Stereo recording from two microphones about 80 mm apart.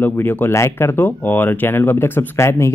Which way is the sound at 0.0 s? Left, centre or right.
Left.